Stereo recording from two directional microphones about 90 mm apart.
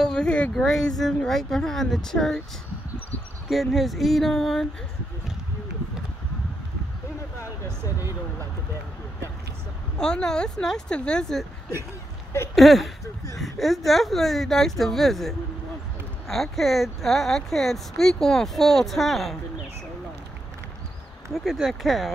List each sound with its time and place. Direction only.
0.0 s a sound: 10° left (ahead or behind)
0.6 s speech: 5° left (ahead or behind)
3.4 s speech: centre (ahead or behind)
7.4 s speech: 30° right (ahead or behind)
9.9 s speech: 10° left (ahead or behind)
12.5 s speech: centre (ahead or behind)
21.3 s speech: 5° right (ahead or behind)